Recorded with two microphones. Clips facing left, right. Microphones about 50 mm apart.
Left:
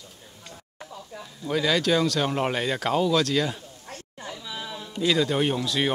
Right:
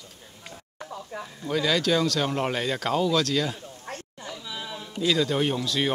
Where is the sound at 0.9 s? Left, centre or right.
Right.